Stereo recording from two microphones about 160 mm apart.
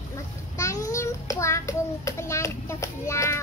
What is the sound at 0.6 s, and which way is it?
Child singing, 20° left (ahead or behind).